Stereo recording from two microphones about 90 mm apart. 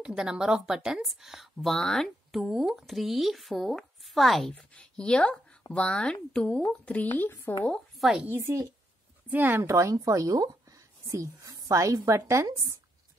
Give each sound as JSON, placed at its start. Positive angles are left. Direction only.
{"t": 0.0, "sound": "speech", "side_deg": -5}
{"t": 8.3, "sound": "a woman's voice", "side_deg": -30}
{"t": 9.6, "sound": "a woman's voice", "side_deg": -35}